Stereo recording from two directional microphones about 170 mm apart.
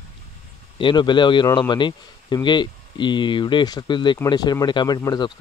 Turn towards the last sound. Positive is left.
turn(degrees=25)  # may be behind; listen again after turning